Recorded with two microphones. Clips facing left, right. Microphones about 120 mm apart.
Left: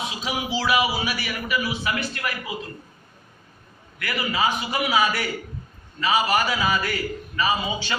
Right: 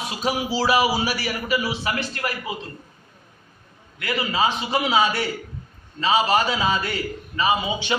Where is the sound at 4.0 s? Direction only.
25° right (ahead or behind).